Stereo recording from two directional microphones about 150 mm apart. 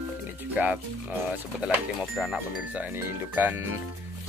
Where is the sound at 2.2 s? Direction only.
5° right (ahead or behind).